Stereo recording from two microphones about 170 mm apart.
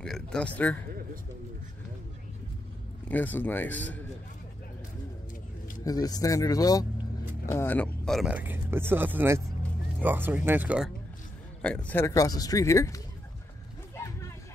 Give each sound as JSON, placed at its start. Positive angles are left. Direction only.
{"t": 0.0, "sound": "speech", "side_deg": 5}
{"t": 3.1, "sound": "speech", "side_deg": 10}
{"t": 5.9, "sound": "speech", "side_deg": 20}
{"t": 7.5, "sound": "speech", "side_deg": 10}
{"t": 11.6, "sound": "speech", "side_deg": 5}